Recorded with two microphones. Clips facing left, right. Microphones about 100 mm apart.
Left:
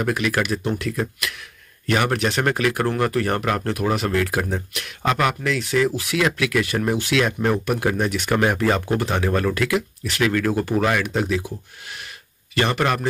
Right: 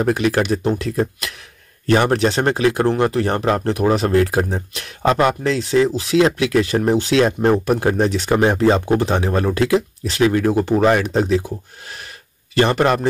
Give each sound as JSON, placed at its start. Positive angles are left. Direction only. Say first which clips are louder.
{"t": 0.0, "sound": "speech", "louder": "right 5 dB", "side_deg": -35}